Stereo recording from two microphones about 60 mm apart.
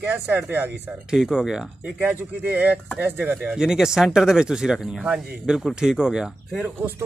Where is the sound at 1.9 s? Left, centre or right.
Right.